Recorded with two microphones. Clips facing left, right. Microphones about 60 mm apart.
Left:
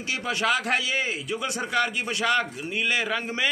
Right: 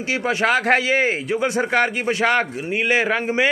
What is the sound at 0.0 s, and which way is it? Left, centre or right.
Speech, right.